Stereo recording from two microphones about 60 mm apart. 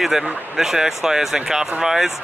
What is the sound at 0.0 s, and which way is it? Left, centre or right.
Speech, centre.